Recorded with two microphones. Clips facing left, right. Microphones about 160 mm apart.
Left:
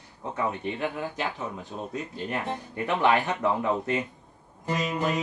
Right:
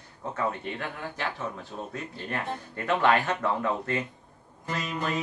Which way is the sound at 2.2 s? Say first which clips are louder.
Even; 15° left (ahead or behind).